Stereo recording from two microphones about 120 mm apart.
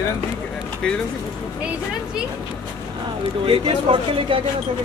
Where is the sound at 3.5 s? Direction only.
50° right (ahead or behind).